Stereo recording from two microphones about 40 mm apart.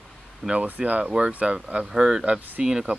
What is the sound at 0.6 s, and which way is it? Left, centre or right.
Speech, right.